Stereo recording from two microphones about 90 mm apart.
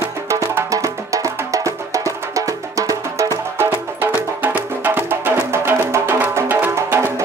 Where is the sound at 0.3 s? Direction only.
35° right (ahead or behind).